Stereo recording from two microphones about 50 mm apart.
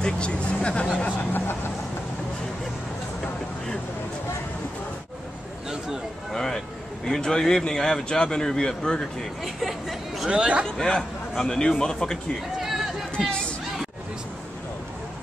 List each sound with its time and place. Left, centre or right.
0.0 s speech: left
1.0 s a sound: left
6.3 s vehicle: centre
7.1 s speech: centre
9.4 s a sound: centre
10.2 s a man's voice: centre
10.8 s a man's voice: centre